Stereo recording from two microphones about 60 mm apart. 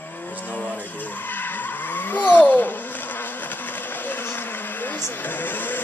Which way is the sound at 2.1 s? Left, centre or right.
Left.